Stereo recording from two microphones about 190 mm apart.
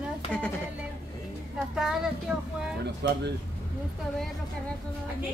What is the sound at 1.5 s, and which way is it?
Speech, 5° right (ahead or behind).